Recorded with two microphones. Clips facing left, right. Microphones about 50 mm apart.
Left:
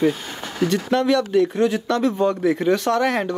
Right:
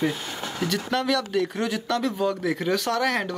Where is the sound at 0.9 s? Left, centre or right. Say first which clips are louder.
Left 6 dB; centre.